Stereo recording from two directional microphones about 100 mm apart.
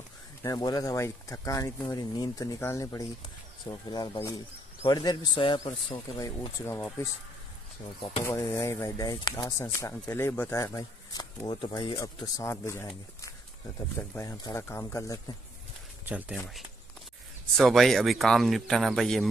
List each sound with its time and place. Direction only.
0.4 s speech: 40° left (ahead or behind)
6.6 s speech: 25° left (ahead or behind)
8.2 s speech: 25° left (ahead or behind)
9.6 s speech: 30° left (ahead or behind)
10.5 s speech: 35° left (ahead or behind)
11.4 s speech: 50° left (ahead or behind)
12.0 s speech: 30° left (ahead or behind)
14.2 s speech: 45° left (ahead or behind)
14.5 s speech: 25° left (ahead or behind)
16.1 s speech: 15° right (ahead or behind)
17.6 s speech: centre (ahead or behind)